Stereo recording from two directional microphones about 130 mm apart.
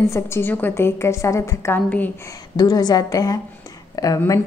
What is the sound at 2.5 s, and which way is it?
A woman's voice, 30° left (ahead or behind).